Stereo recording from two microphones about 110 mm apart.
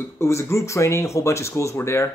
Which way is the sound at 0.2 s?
25° left (ahead or behind).